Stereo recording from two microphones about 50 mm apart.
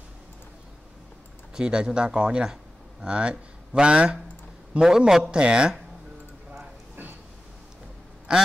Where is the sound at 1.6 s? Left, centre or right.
Centre.